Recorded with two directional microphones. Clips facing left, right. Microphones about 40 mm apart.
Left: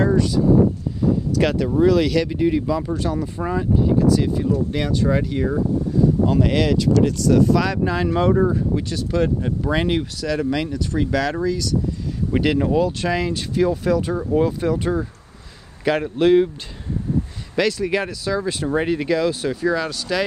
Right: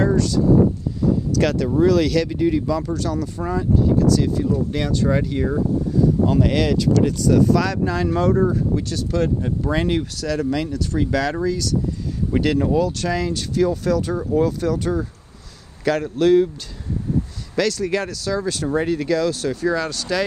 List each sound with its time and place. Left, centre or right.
0.0 s a sound: centre
1.3 s speech: centre
12.3 s speech: centre
17.6 s speech: centre